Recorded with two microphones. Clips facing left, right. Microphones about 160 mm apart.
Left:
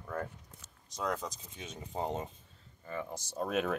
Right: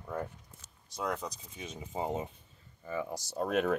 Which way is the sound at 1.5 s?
Centre (ahead or behind).